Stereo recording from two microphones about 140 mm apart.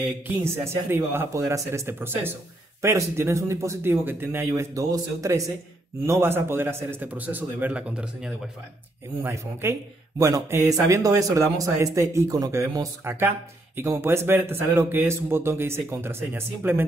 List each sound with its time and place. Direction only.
0.4 s speech: 15° right (ahead or behind)
9.2 s speech: 20° right (ahead or behind)